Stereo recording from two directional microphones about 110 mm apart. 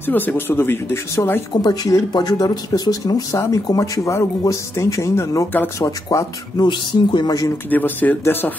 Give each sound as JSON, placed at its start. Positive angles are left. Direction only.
{"t": 0.0, "sound": "speech", "side_deg": 15}
{"t": 1.5, "sound": "speech", "side_deg": 40}
{"t": 7.7, "sound": "speech", "side_deg": 15}